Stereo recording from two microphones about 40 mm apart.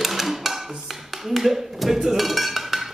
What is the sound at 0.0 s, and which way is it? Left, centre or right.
Music, centre.